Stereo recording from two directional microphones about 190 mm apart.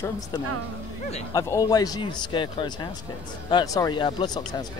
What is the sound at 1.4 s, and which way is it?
Speech, 20° left (ahead or behind).